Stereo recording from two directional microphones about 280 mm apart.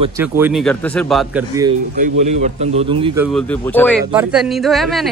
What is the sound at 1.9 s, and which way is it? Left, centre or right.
A man's voice, right.